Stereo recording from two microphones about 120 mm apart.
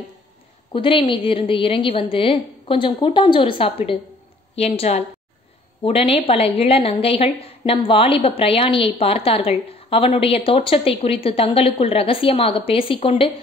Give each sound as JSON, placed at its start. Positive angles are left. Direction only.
{"t": 0.7, "sound": "a woman's voice", "side_deg": 45}
{"t": 4.6, "sound": "a woman's voice", "side_deg": 60}